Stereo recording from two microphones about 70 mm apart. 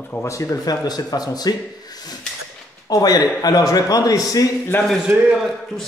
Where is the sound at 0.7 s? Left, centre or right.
Left.